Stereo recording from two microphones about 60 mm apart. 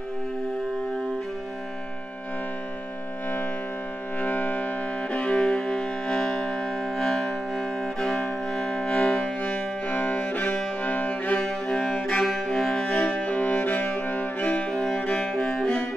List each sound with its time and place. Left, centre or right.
4.2 s music: left; by 15.8 s centre